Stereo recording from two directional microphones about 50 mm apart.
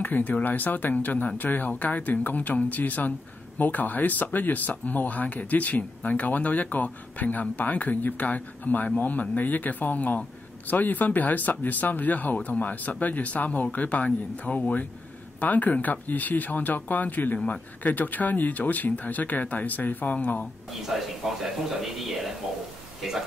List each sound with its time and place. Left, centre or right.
0.0 s speech: left
20.8 s speech: centre